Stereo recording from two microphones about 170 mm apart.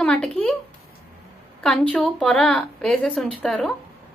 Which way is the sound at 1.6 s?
5° left (ahead or behind).